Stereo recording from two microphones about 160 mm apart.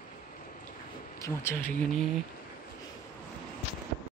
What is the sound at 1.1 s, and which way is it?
Speech, 15° left (ahead or behind).